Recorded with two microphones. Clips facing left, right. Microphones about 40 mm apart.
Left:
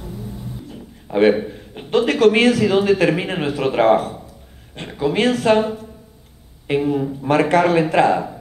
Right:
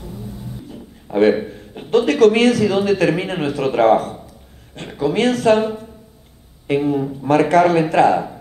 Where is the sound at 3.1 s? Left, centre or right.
Left.